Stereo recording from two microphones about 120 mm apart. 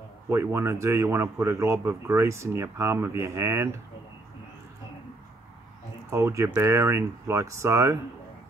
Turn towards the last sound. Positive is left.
turn(degrees=-25)  # may be behind; listen again after turning